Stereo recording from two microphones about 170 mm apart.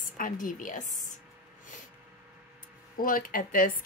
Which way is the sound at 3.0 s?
55° left (ahead or behind).